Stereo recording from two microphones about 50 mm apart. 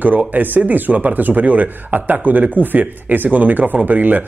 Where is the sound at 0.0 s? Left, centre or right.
Right.